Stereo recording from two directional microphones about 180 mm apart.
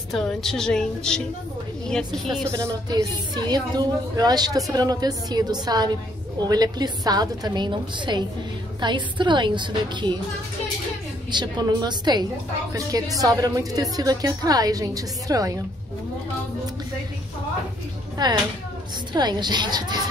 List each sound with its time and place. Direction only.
0.1 s a woman's voice: centre (ahead or behind)
2.5 s a woman's voice: 20° right (ahead or behind)
11.3 s a woman's voice: 20° right (ahead or behind)
18.1 s a woman's voice: 25° right (ahead or behind)